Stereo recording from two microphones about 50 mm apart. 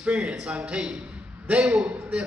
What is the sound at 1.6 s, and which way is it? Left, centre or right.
Speech, centre.